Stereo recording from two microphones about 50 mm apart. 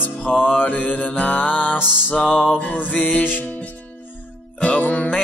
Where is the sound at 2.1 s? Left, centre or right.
Left.